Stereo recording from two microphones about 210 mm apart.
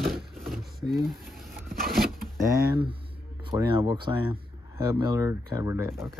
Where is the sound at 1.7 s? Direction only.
45° right (ahead or behind).